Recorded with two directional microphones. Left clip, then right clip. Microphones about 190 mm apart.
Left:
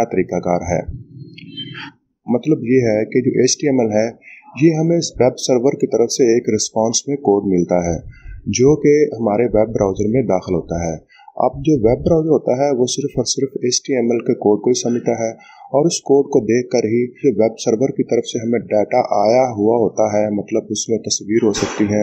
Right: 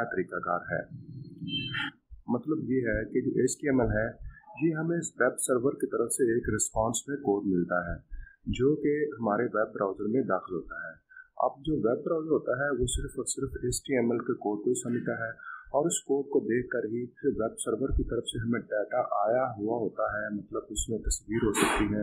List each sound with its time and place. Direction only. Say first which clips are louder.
0.0 s speech: left 14 dB; 25° left (ahead or behind)
2.2 s speech: left 14 dB; 20° left (ahead or behind)